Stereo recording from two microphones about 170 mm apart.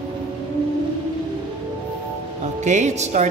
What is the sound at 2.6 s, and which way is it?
Speech, 45° right (ahead or behind).